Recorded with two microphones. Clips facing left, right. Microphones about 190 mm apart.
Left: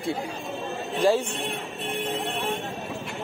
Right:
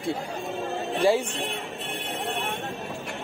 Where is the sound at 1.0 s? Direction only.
15° right (ahead or behind).